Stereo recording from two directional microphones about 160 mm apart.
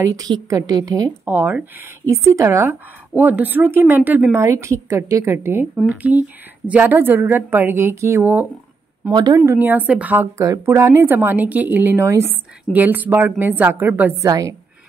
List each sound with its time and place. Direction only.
0.0 s a woman's voice: 20° right (ahead or behind)
9.1 s a woman's voice: 25° right (ahead or behind)
9.4 s a woman's voice: 10° right (ahead or behind)